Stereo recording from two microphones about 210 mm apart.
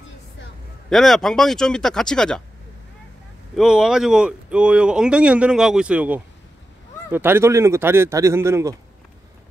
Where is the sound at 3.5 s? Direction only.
5° right (ahead or behind).